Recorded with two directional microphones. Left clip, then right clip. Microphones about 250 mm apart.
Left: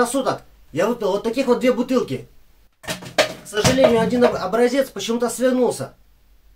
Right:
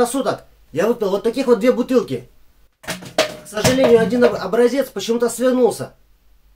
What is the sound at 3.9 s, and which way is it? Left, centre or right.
Speech, centre.